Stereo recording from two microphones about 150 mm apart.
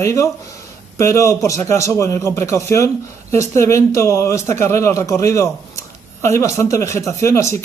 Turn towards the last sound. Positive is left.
turn(degrees=20)  # may be behind; listen again after turning